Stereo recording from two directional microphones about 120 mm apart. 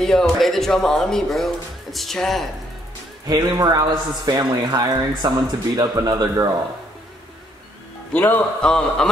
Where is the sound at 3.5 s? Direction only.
35° right (ahead or behind).